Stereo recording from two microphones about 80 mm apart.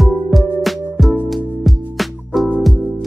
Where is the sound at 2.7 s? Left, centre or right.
Right.